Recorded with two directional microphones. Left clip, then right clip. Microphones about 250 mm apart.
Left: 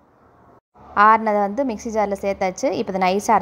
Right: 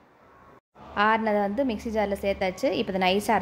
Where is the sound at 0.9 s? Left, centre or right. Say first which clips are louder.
Left 8 dB; centre.